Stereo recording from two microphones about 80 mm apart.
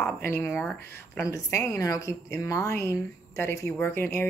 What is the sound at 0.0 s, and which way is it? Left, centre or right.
A woman's voice, left.